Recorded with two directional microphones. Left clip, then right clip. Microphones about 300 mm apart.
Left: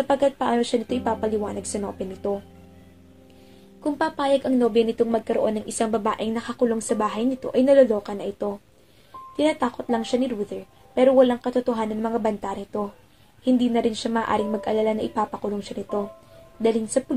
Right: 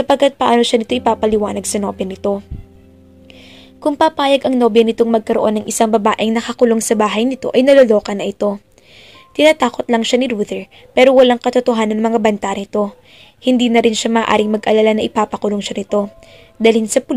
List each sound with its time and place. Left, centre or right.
0.0 s speech: right
3.8 s speech: right